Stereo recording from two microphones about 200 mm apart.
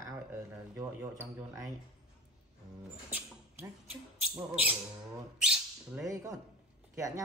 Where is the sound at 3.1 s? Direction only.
10° right (ahead or behind).